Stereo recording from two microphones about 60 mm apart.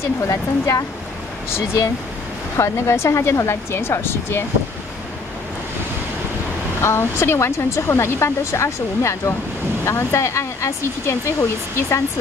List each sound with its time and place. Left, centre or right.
0.3 s speech: left
2.5 s speech: left
6.8 s speech: left